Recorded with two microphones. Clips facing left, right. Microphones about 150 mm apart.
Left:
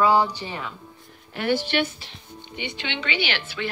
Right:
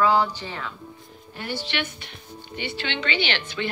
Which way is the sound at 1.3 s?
80° left.